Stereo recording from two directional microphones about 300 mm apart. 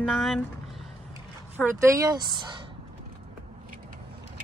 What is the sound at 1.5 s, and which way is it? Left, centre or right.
Speech, centre.